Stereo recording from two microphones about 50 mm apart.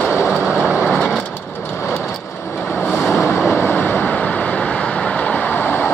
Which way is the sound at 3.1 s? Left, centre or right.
Left.